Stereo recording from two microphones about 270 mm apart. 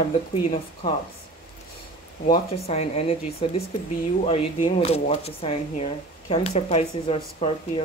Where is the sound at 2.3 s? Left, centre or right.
Left.